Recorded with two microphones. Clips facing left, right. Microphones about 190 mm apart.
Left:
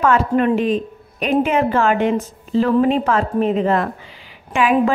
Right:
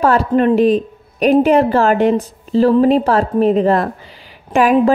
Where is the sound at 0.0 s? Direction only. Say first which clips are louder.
Right 3 dB; 35° right (ahead or behind).